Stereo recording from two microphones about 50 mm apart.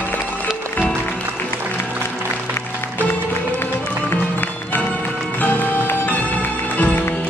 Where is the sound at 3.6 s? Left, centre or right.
Left.